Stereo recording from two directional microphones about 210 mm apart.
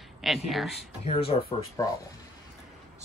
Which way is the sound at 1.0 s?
25° left (ahead or behind).